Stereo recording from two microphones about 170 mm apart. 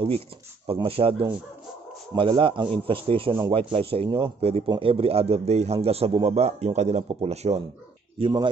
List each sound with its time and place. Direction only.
0.7 s a man's voice: 35° right (ahead or behind)
2.1 s a man's voice: 30° right (ahead or behind)
8.2 s speech: 25° right (ahead or behind)